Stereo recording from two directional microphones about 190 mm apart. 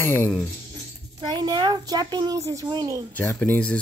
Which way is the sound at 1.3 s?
20° right (ahead or behind).